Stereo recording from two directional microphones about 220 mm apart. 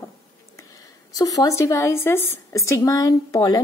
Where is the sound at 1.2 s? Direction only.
15° left (ahead or behind).